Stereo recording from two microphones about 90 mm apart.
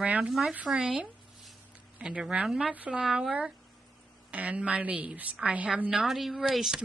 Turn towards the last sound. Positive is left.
turn(degrees=-5)  # may be behind; listen again after turning